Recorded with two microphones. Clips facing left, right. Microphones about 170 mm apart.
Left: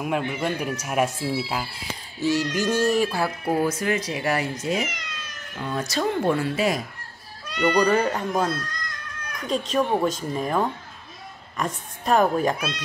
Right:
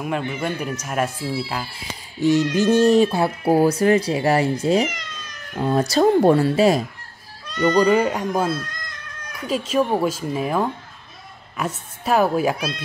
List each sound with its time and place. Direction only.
0.0 s speech: 5° left (ahead or behind)
2.2 s speech: 20° right (ahead or behind)
7.4 s speech: 10° left (ahead or behind)
7.8 s speech: 10° right (ahead or behind)